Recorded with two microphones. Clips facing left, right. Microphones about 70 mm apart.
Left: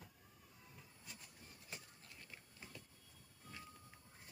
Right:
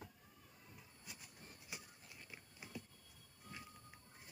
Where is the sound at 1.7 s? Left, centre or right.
Centre.